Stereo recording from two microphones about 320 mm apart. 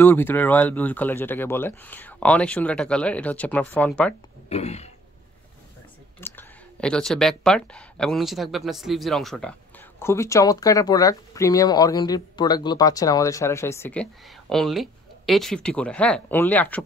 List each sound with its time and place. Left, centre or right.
0.0 s speech: centre
4.5 s throat clearing: centre
6.1 s speech: centre